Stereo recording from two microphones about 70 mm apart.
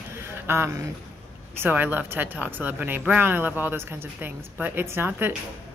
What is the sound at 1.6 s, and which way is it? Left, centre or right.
Speech, right.